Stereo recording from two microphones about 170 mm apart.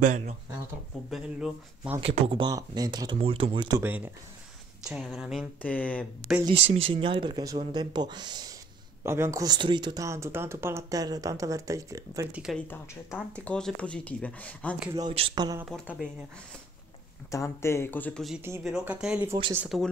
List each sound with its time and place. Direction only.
0.0 s speech: 45° right (ahead or behind)
1.1 s speech: 5° right (ahead or behind)
2.0 s speech: 35° right (ahead or behind)
3.8 s speech: 10° right (ahead or behind)
5.6 s speech: 10° left (ahead or behind)
6.6 s speech: 35° right (ahead or behind); by 12.3 s 20° right (ahead or behind)
12.3 s speech: 5° right (ahead or behind)
12.5 s speech: 10° left (ahead or behind)
15.1 s speech: 30° right (ahead or behind)
15.7 s speech: 5° left (ahead or behind)
17.3 s speech: 15° left (ahead or behind)
18.6 s speech: centre (ahead or behind)